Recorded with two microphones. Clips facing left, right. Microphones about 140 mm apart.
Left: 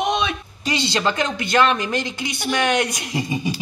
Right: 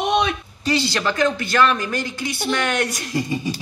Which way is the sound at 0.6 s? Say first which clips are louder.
Right 1 dB; 20° left (ahead or behind).